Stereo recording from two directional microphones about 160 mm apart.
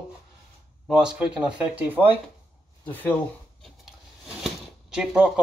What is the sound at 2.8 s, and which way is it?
Speech, 10° left (ahead or behind).